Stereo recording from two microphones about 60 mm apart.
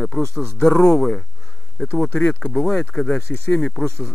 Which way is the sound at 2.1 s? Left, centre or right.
Left.